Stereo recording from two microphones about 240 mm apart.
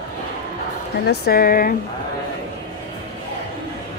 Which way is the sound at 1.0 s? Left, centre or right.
Left.